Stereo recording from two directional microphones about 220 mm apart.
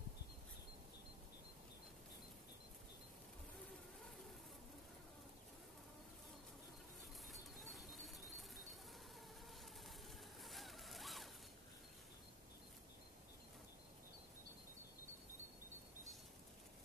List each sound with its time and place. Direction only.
7.2 s bird: centre (ahead or behind)
10.4 s zipper: centre (ahead or behind)